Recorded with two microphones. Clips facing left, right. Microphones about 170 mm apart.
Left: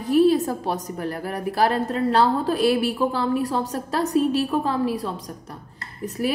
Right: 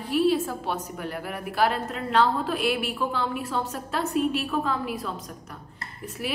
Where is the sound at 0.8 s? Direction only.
35° left (ahead or behind).